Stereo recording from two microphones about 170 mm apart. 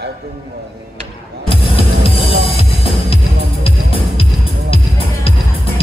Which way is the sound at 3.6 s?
35° left (ahead or behind).